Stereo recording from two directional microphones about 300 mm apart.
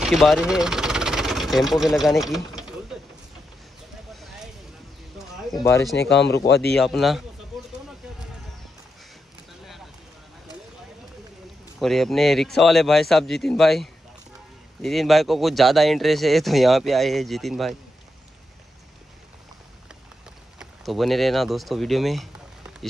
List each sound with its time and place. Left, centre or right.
0.0 s engine: centre
4.1 s a sound: centre
6.0 s speech: left
6.7 s speech: centre
11.8 s speech: centre
20.5 s speech: centre